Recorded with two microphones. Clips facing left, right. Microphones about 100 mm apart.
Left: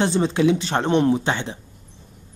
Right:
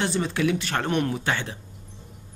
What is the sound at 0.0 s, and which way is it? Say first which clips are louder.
Speech: left 6 dB; 25° left (ahead or behind).